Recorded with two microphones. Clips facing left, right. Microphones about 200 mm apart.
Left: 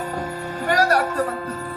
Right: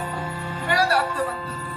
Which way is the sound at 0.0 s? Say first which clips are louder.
Left 3 dB; 45° left (ahead or behind).